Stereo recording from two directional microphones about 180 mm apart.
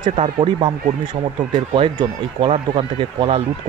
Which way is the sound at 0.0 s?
30° right (ahead or behind).